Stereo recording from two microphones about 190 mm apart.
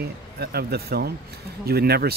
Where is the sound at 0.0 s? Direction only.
55° right (ahead or behind).